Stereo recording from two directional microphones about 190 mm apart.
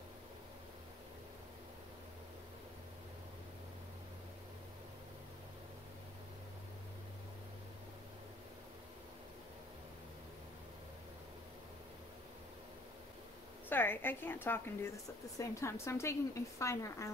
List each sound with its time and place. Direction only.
13.7 s a woman's voice: 10° left (ahead or behind)